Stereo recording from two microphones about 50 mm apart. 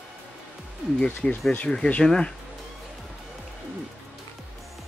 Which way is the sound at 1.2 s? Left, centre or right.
Centre.